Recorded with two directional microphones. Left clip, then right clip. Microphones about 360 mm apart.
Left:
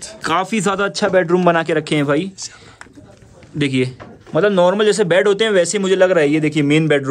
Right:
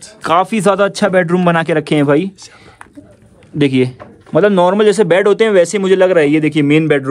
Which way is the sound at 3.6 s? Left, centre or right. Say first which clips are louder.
Right 5 dB; centre.